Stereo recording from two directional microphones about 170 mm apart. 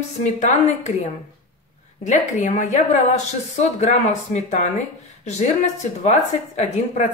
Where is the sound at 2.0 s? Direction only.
45° left (ahead or behind).